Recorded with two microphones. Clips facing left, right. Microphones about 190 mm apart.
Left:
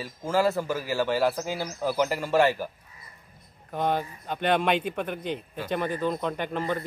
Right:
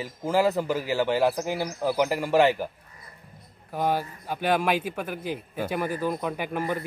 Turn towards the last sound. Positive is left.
turn(degrees=-10)  # may be behind; listen again after turning